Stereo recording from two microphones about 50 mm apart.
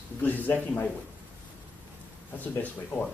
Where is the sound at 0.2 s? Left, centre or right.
Left.